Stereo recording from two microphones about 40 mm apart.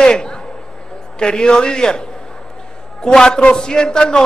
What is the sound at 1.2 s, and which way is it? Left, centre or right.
A man's voice, left.